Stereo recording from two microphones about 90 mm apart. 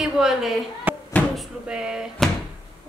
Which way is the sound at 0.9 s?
15° right (ahead or behind).